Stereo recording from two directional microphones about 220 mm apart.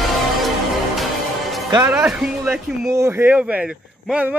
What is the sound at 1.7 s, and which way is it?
Speech, 15° right (ahead or behind).